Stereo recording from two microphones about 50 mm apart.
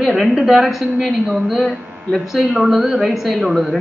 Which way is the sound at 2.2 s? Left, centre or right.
Centre.